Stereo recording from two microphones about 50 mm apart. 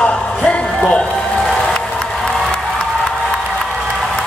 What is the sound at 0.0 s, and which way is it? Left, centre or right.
Music, left.